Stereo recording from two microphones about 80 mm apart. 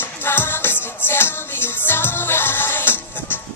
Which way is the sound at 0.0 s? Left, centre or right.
Left.